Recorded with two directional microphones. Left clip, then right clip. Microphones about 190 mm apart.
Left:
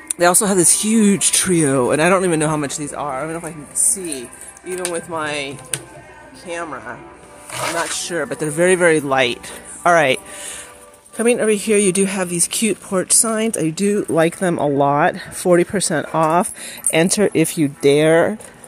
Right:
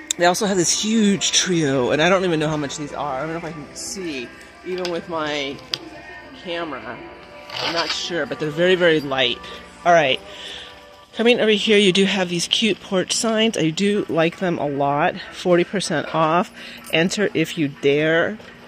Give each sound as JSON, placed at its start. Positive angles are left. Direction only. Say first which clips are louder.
{"t": 0.1, "sound": "speech", "louder": "left 2 dB", "side_deg": 15}
{"t": 6.5, "sound": "speech", "louder": "left 1 dB", "side_deg": 5}
{"t": 9.8, "sound": "speech", "louder": "left 2 dB", "side_deg": 35}
{"t": 11.1, "sound": "speech", "louder": "even", "side_deg": 5}